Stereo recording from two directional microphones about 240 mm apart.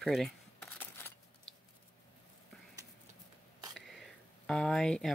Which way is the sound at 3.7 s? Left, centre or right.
Centre.